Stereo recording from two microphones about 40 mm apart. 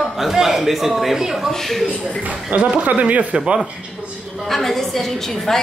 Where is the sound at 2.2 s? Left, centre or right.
Right.